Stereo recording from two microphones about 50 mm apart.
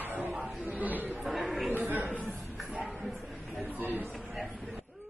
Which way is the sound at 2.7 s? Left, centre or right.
Right.